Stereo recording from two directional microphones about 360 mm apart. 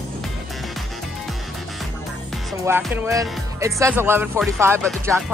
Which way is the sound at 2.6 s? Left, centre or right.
Centre.